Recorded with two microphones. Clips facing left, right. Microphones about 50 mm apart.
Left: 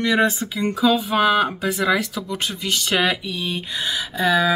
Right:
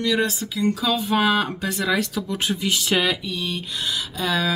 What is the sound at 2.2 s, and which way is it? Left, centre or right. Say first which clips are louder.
Speech: right 2 dB; centre.